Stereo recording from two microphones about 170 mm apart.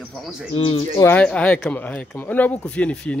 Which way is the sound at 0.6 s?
35° left (ahead or behind).